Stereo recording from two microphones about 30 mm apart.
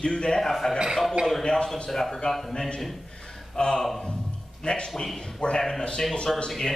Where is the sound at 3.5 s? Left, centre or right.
Left.